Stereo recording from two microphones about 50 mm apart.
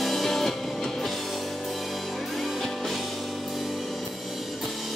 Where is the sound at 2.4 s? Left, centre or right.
Centre.